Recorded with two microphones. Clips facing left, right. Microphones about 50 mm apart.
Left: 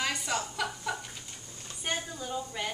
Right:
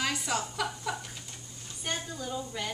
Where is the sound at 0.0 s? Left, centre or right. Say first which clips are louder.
Right 1 dB; centre.